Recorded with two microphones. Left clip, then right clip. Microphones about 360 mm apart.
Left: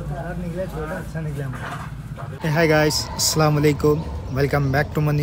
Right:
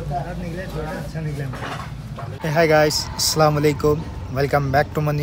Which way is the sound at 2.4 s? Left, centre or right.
Centre.